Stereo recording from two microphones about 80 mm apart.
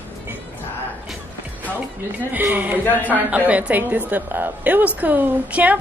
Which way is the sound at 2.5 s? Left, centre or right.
Right.